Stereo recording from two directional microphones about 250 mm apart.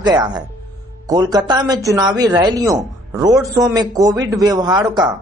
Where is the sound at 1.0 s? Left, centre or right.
Centre.